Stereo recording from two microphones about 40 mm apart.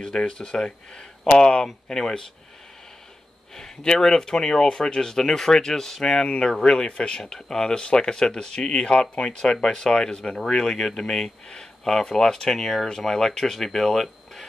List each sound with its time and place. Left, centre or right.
0.0 s speech: centre
3.5 s speech: centre
6.2 s speech: left; by 14.4 s centre